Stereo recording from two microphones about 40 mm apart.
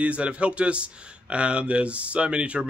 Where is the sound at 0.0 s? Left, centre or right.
Right.